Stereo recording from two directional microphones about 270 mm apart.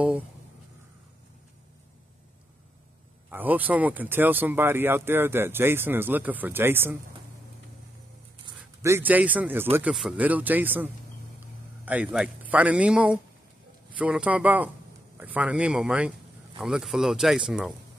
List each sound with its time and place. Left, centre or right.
3.3 s speech: centre
8.5 s speech: centre